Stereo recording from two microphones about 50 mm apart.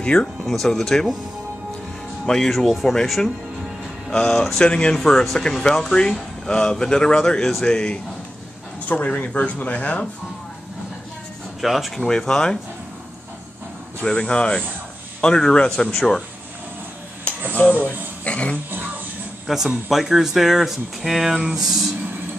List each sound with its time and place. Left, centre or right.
0.0 s speech: centre
0.5 s speech: centre
2.2 s speech: centre
5.0 s speech: centre
5.4 s speech: centre
8.8 s speech: left
11.6 s speech: centre
12.1 s speech: centre
14.0 s speech: centre
17.6 s speech: left
18.2 s a sound: left
19.4 s speech: centre